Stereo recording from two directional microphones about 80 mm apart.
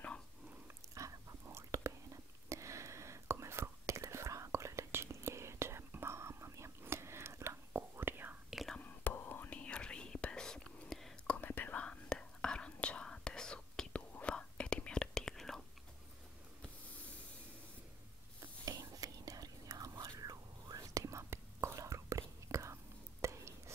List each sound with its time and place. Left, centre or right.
0.9 s whispering: right
8.8 s whispering: left; by 11.3 s centre
11.3 s whispering: left; by 15.6 s centre
18.8 s whispering: right